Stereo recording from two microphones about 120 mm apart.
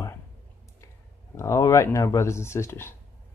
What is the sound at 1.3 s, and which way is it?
Speech, 25° left (ahead or behind).